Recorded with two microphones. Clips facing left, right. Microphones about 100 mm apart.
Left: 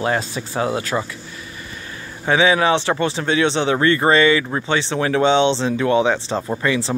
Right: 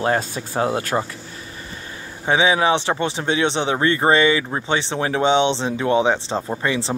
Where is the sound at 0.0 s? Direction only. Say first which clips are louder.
Even; 50° right (ahead or behind).